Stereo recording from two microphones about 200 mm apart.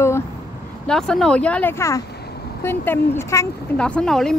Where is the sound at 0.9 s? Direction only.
5° left (ahead or behind).